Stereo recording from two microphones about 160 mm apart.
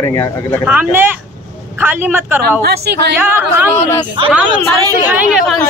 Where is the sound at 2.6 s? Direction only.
90° right.